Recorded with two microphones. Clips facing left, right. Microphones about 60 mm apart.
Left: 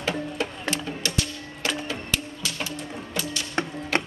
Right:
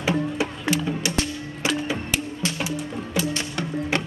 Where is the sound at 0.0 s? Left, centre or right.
Centre.